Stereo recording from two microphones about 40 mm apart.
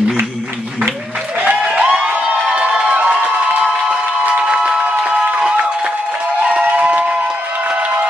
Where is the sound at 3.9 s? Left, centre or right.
Right.